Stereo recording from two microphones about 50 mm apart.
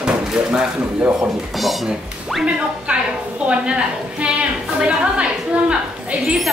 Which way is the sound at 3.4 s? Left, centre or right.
Right.